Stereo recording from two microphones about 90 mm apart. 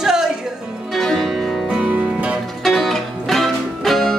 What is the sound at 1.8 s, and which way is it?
Music, 15° right (ahead or behind).